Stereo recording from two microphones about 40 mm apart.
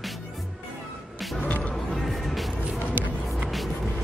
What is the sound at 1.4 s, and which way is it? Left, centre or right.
Music, left.